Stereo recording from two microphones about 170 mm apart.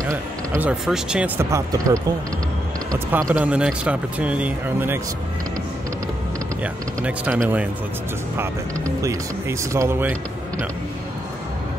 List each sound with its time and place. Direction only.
0.1 s speech: 15° right (ahead or behind)
6.6 s speech: 10° right (ahead or behind)
9.0 s speech: 15° right (ahead or behind)